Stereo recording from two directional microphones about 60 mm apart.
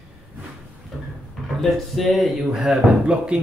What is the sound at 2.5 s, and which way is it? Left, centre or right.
Speech, centre.